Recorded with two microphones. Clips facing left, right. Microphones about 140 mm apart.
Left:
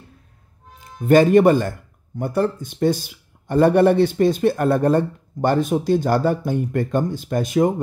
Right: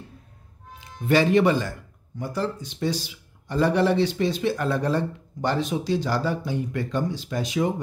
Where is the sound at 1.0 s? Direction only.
50° left (ahead or behind).